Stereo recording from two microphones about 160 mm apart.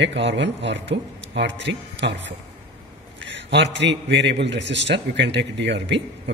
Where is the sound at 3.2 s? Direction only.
90° right.